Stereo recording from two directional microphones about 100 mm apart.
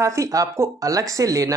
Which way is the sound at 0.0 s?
30° right (ahead or behind).